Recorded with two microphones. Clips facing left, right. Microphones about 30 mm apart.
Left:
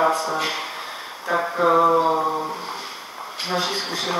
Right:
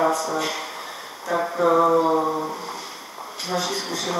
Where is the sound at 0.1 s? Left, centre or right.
Left; by 2.5 s centre.